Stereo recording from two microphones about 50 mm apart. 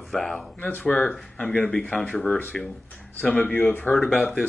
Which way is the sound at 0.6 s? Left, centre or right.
Left.